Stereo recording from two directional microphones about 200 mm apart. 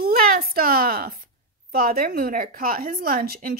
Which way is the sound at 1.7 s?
45° right (ahead or behind).